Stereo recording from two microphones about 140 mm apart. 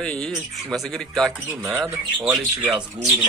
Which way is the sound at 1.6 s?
20° right (ahead or behind).